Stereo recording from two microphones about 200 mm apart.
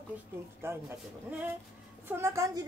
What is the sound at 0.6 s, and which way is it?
Speech, 10° right (ahead or behind).